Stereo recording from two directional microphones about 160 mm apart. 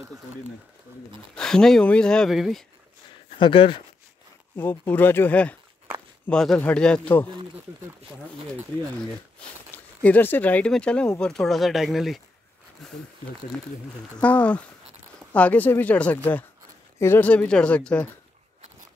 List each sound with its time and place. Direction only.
1.3 s speech: 5° left (ahead or behind)
3.3 s speech: 30° left (ahead or behind)
4.6 s speech: 10° left (ahead or behind)
9.7 s a sound: 10° left (ahead or behind)
10.0 s speech: 10° left (ahead or behind)
14.1 s speech: 10° left (ahead or behind)